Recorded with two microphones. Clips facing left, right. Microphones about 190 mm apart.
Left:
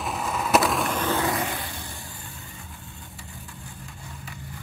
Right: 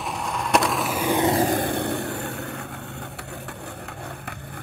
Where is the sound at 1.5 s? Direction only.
55° right (ahead or behind).